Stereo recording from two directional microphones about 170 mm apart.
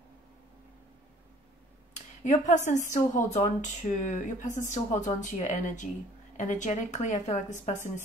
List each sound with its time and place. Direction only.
2.2 s speech: 45° left (ahead or behind)